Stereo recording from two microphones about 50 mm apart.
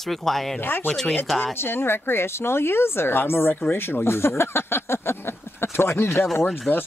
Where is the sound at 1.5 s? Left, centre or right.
Left.